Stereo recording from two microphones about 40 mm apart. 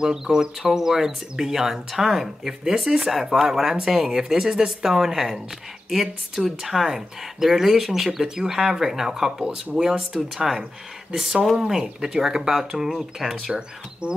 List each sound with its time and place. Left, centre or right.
0.0 s speech: centre
13.5 s speech: right